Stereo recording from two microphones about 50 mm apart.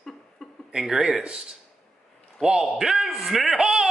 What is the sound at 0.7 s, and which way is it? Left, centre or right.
A man's voice, centre.